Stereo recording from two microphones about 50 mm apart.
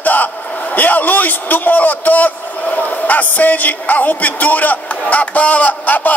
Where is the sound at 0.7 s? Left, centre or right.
Left.